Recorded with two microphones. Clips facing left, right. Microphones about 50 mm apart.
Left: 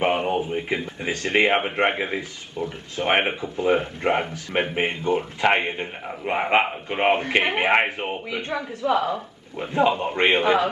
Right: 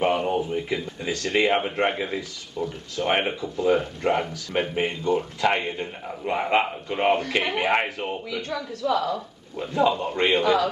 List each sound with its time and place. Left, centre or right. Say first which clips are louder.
0.0 s speech: left 1 dB; left